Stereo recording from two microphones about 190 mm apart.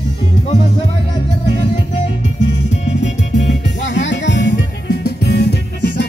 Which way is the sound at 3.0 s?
70° left (ahead or behind).